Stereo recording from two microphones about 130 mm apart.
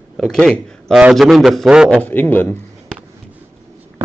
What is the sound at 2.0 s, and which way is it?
Speech, 15° left (ahead or behind).